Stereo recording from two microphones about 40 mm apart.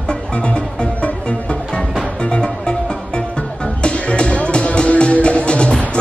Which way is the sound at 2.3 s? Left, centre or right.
Left.